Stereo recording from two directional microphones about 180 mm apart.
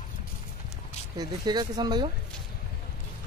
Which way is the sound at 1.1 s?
25° right (ahead or behind).